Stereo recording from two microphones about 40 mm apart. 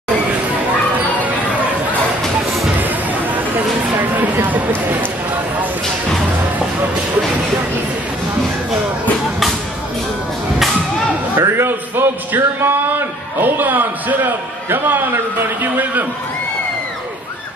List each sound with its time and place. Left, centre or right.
2.8 s a sound: right
11.3 s music: right
12.3 s a man's voice: right